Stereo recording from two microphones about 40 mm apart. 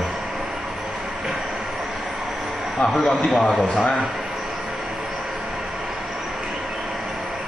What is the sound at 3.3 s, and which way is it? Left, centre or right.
Speech, centre.